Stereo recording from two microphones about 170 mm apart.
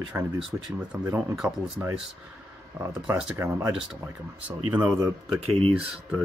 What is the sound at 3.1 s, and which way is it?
Speech, 10° right (ahead or behind).